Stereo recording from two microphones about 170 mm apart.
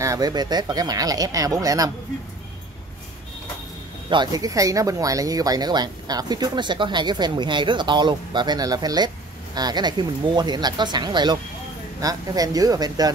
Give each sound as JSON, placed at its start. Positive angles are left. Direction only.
{"t": 0.0, "sound": "speech", "side_deg": -20}
{"t": 4.1, "sound": "speech", "side_deg": -25}